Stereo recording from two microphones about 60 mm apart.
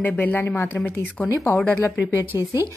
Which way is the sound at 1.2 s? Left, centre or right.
Left.